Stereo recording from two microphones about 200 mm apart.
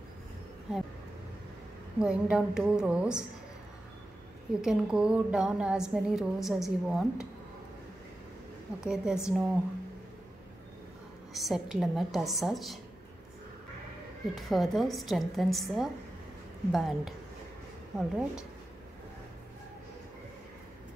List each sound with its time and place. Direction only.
2.0 s a woman's voice: 5° right (ahead or behind)
4.6 s a woman's voice: 5° right (ahead or behind)
8.8 s a woman's voice: 5° right (ahead or behind)
11.3 s a woman's voice: centre (ahead or behind)
14.3 s a woman's voice: centre (ahead or behind)